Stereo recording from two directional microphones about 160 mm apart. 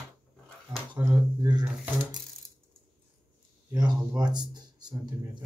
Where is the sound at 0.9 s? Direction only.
20° right (ahead or behind).